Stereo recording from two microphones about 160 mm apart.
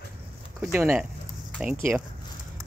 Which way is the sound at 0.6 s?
10° right (ahead or behind).